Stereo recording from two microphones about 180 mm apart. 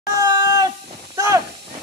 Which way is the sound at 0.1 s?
20° right (ahead or behind).